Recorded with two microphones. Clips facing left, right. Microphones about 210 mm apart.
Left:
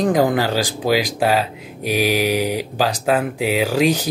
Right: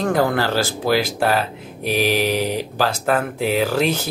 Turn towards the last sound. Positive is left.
turn(degrees=15)  # may be behind; listen again after turning